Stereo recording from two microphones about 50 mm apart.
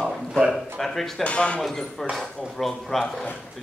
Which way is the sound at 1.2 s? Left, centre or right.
Left.